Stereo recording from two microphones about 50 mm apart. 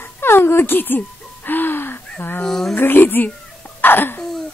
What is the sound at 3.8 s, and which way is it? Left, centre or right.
Cough, left.